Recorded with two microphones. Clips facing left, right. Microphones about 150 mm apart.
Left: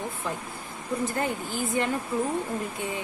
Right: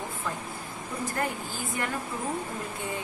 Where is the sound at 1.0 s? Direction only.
20° left (ahead or behind).